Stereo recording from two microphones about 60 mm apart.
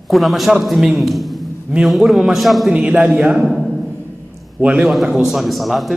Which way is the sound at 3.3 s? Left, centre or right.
Centre.